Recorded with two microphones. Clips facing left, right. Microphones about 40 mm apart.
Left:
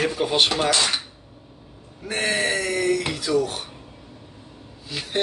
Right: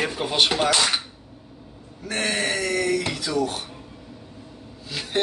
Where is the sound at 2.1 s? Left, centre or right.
Centre.